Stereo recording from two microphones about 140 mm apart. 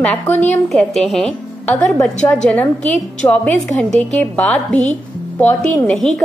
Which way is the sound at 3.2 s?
20° left (ahead or behind).